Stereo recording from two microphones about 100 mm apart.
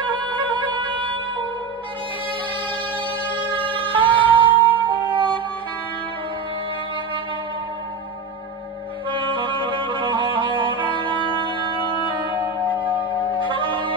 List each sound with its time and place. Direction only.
0.0 s music: 55° right (ahead or behind)
3.3 s music: 15° right (ahead or behind)
3.8 s emergency vehicle: 55° right (ahead or behind)
4.4 s music: 55° right (ahead or behind)
9.1 s music: 55° right (ahead or behind)